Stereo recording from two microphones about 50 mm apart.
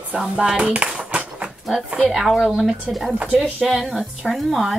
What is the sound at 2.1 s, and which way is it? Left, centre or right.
A woman's voice, centre.